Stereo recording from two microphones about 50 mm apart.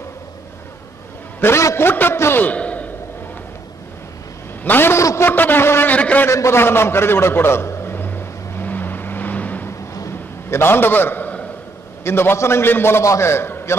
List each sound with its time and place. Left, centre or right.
1.5 s a man's voice: left
1.8 s a man's voice: left
2.4 s a sound: left
4.6 s a man's voice: left
4.9 s a man's voice: left
5.3 s a man's voice: left
5.9 s a sound: left
6.3 s a man's voice: left
6.6 s a sound: left
9.7 s a sound: left
12.0 s a man's voice: left
13.0 s a man's voice: left